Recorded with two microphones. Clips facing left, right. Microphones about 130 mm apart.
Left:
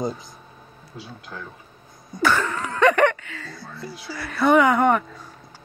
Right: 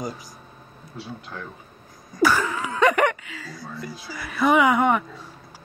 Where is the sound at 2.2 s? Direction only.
10° right (ahead or behind).